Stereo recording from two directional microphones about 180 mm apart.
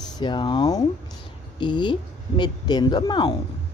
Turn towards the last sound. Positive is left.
turn(degrees=25)  # may be behind; listen again after turning